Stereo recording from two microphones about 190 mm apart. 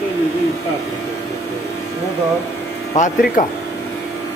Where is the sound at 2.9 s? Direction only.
40° left (ahead or behind).